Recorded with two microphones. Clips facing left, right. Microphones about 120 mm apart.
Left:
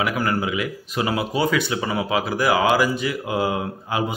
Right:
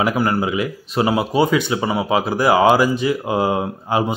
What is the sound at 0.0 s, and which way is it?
Speech, 30° right (ahead or behind).